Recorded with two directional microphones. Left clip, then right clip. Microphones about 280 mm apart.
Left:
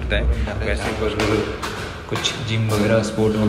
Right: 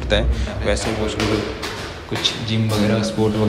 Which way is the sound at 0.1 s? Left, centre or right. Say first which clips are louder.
Right 4 dB; centre.